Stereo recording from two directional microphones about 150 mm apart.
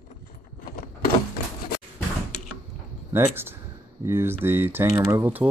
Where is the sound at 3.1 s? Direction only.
15° right (ahead or behind).